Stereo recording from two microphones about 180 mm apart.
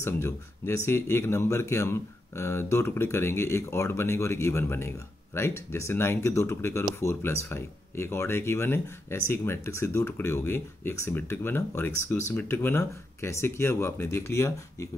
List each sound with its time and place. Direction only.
0.0 s speech: 15° left (ahead or behind)